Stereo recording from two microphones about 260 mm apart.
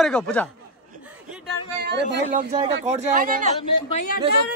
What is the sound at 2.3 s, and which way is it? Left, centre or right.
Speech, right.